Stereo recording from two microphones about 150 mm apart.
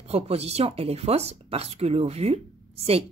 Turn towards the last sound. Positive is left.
turn(degrees=-40)  # may be behind; listen again after turning